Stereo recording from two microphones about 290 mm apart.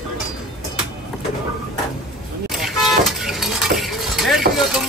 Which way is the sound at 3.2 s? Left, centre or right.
Centre.